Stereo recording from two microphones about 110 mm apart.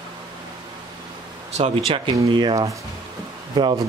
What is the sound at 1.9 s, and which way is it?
Speech, 50° right (ahead or behind).